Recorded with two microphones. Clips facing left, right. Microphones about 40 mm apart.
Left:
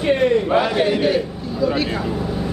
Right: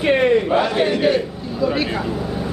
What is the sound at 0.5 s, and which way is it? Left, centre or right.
Speech, centre.